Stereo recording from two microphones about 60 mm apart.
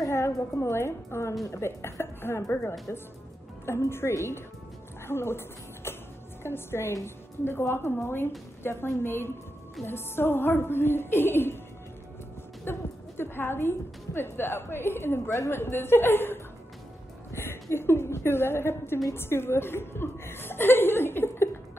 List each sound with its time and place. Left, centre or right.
0.1 s a woman's voice: left
5.9 s music: left
6.4 s a woman's voice: left
12.7 s a woman's voice: left